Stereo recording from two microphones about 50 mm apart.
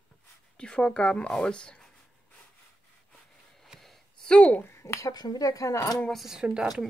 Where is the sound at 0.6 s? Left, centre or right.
Centre.